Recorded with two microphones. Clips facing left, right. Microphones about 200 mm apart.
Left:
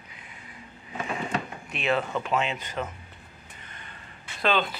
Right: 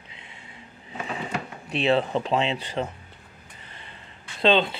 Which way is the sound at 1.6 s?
35° right (ahead or behind).